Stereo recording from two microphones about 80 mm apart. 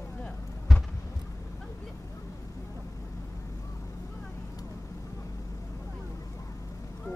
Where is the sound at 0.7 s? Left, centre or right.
Centre.